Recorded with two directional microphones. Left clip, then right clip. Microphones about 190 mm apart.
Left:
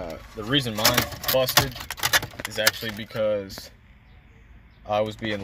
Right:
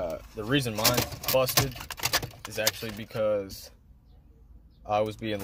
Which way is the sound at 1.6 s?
Centre (ahead or behind).